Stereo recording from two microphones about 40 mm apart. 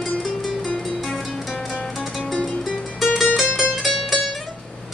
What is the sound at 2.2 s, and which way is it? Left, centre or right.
Music, centre.